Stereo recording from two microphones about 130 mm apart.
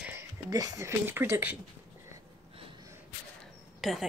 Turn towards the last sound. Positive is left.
turn(degrees=0)  # may be behind; listen again after turning